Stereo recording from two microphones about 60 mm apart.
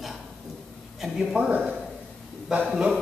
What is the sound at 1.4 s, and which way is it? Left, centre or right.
Speech, right.